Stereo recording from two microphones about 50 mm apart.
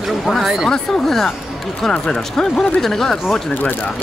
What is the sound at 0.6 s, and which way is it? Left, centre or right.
Speech, centre.